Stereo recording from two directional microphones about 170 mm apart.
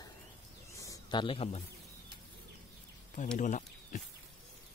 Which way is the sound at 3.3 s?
50° left (ahead or behind).